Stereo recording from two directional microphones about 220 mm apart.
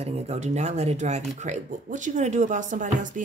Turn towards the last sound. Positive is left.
turn(degrees=-35)  # may be behind; listen again after turning